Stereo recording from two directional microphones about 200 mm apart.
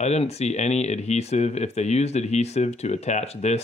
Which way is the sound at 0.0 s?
30° left (ahead or behind).